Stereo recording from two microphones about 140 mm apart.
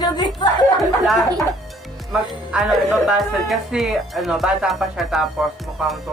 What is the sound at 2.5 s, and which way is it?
Speech, 5° right (ahead or behind).